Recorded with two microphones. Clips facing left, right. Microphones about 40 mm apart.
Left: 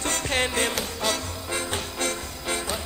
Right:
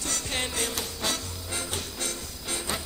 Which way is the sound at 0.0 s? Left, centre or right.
Left.